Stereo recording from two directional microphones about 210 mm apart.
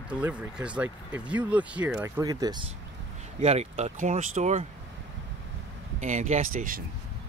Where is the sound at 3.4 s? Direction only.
30° right (ahead or behind).